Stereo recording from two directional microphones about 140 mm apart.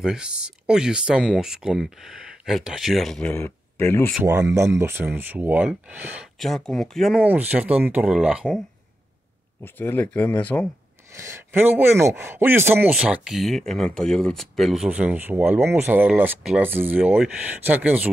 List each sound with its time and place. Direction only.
0.0 s speech: 5° right (ahead or behind); by 4.1 s 15° left (ahead or behind)
4.2 s speech: 15° right (ahead or behind)
6.4 s speech: centre (ahead or behind)
9.6 s speech: 15° left (ahead or behind)
11.1 s speech: 20° right (ahead or behind)